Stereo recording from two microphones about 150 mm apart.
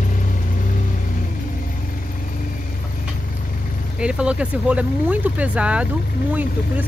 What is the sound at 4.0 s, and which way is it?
Speech, 5° right (ahead or behind).